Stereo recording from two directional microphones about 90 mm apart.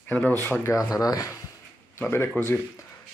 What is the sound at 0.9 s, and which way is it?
Speech, 40° left (ahead or behind).